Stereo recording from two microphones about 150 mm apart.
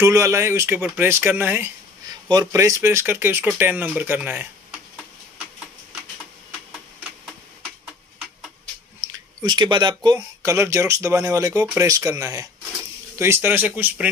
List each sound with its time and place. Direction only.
0.0 s speech: 20° right (ahead or behind)
2.2 s speech: 25° right (ahead or behind)
9.0 s speech: 30° right (ahead or behind); by 14.1 s 10° right (ahead or behind)